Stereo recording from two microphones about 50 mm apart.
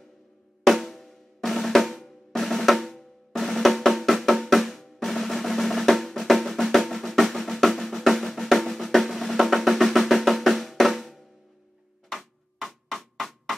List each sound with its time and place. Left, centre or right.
0.7 s drum: centre
12.2 s music: centre